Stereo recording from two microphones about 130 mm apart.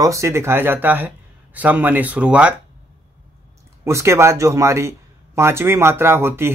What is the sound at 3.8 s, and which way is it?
Speech, 20° right (ahead or behind).